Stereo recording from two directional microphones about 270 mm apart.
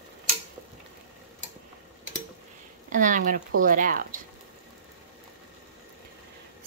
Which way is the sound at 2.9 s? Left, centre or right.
Right.